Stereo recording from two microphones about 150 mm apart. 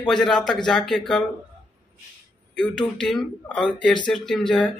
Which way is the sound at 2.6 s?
5° left (ahead or behind).